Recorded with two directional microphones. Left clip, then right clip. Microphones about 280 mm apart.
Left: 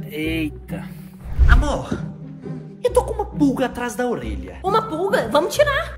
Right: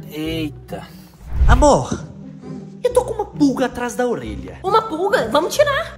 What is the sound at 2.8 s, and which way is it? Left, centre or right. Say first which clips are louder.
Speech: right 1 dB; centre.